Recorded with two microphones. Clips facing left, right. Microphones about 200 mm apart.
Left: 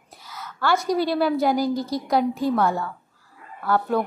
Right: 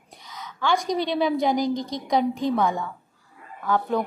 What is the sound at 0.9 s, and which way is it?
A woman's voice, 5° left (ahead or behind).